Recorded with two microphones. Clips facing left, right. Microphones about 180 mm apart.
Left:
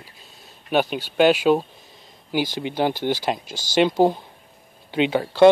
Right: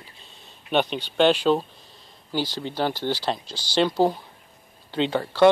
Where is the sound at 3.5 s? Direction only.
45° left (ahead or behind).